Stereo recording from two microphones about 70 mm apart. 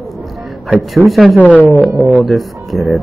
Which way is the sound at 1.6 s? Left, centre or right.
Right.